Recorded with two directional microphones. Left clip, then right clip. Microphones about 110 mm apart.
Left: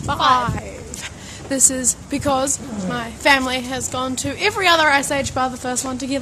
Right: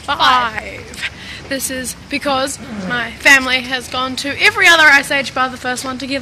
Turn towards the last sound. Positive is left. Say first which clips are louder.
# right 3 dB
turn(degrees=20)  # may be behind; listen again after turning